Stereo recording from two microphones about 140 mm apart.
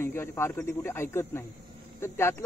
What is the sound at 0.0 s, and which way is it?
Speech, 15° left (ahead or behind).